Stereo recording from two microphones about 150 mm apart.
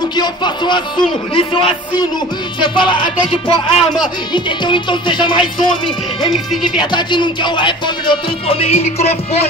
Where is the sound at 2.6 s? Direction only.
30° left (ahead or behind).